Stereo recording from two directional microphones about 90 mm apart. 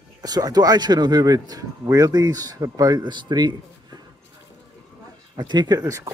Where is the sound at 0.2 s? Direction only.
45° right (ahead or behind).